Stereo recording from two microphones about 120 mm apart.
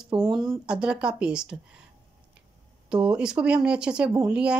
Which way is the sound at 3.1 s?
10° right (ahead or behind).